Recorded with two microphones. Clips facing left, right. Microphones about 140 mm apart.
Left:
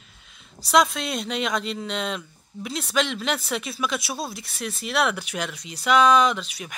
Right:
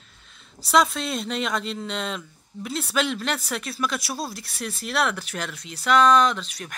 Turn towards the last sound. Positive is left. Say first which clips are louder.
# left 1 dB
turn(degrees=5)  # may be behind; listen again after turning